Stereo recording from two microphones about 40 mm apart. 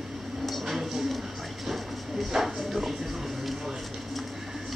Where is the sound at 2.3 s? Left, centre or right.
Centre.